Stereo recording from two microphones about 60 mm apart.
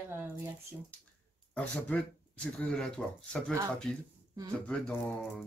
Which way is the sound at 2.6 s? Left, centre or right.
Centre.